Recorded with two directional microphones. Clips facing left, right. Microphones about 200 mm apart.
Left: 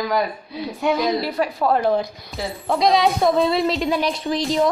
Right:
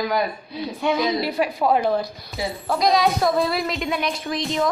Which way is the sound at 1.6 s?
10° right (ahead or behind).